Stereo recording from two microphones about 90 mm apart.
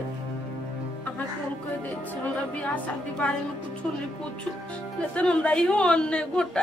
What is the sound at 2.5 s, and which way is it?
Speech, 15° left (ahead or behind).